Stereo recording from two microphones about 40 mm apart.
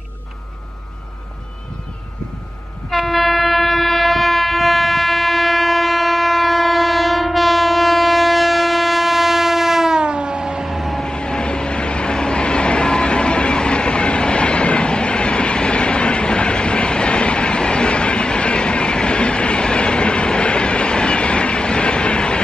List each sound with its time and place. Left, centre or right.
2.9 s train: centre
9.9 s train: right
10.7 s vehicle: centre
11.0 s vehicle: left